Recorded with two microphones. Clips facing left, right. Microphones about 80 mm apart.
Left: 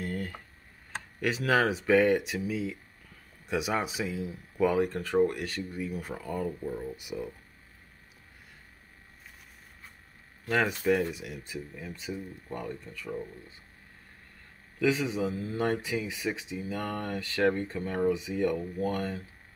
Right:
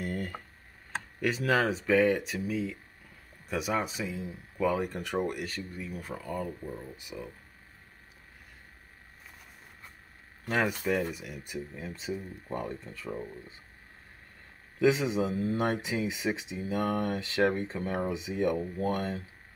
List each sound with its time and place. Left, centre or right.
0.0 s tick: centre
1.2 s speech: centre
4.8 s speech: centre
5.4 s speech: centre
10.4 s speech: centre
10.7 s speech: centre
11.4 s speech: right
14.8 s speech: right